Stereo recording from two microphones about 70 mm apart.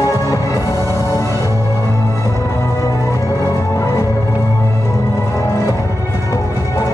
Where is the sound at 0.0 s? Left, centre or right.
Left.